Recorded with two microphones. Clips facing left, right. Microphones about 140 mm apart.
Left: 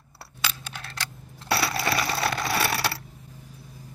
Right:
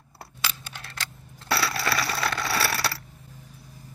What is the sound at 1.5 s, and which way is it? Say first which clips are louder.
Coin: left 1 dB; 25° left (ahead or behind).